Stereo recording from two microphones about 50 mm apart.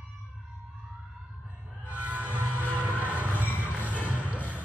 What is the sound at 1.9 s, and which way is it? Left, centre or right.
Music, right.